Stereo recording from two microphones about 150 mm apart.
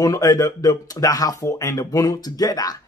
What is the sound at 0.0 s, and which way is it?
Speech, 25° left (ahead or behind).